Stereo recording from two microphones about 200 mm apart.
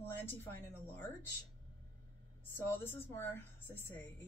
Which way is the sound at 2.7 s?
10° left (ahead or behind).